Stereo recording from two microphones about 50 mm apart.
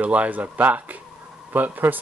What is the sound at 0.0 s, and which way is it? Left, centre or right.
Speech, right.